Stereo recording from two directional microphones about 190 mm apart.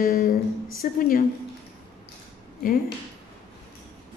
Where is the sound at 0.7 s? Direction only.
45° left (ahead or behind).